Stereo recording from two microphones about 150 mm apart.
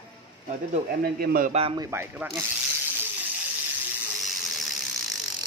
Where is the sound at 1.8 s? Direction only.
15° right (ahead or behind).